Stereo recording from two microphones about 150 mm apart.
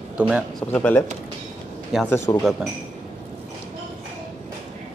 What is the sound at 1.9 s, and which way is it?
Speech, centre (ahead or behind).